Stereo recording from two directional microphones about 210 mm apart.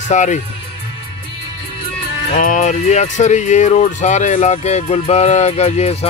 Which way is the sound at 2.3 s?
35° left (ahead or behind).